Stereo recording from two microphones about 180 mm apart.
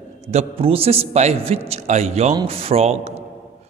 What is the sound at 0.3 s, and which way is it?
A man's voice, 35° right (ahead or behind).